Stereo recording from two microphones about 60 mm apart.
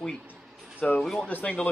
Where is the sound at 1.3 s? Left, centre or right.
Left.